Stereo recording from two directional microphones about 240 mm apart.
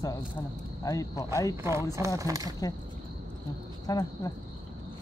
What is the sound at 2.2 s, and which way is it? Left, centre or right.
Speech, centre.